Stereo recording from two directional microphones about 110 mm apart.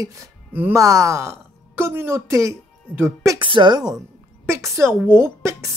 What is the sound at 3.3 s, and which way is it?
Speech, 50° right (ahead or behind).